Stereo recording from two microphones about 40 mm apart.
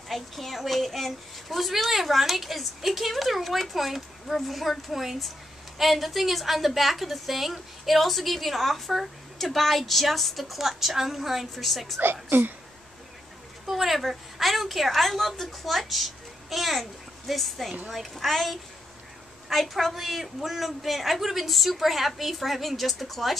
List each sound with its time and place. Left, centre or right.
0.1 s a woman's voice: centre
12.0 s a woman's voice: right
13.7 s a woman's voice: centre